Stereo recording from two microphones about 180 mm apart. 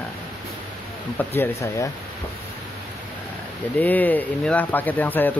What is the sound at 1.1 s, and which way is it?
Speech, 10° left (ahead or behind).